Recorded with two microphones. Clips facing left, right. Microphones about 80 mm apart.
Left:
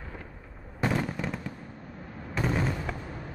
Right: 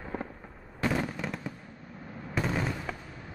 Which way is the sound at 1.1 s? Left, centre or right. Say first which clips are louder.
Left 2 dB; centre.